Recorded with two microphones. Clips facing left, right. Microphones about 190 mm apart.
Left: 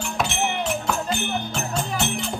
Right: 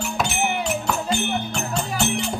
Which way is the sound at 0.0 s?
5° right (ahead or behind).